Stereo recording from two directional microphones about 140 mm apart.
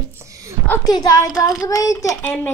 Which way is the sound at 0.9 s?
25° left (ahead or behind).